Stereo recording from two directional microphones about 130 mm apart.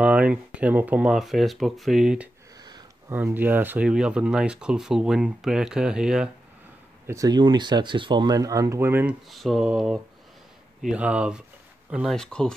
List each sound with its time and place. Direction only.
0.0 s speech: 10° right (ahead or behind)
2.5 s a sound: 30° right (ahead or behind)
3.1 s speech: 15° right (ahead or behind)
7.1 s speech: 30° right (ahead or behind)
9.3 s speech: centre (ahead or behind)